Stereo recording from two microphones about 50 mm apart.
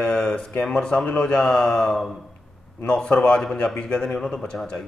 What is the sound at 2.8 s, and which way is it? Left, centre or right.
A man's voice, left.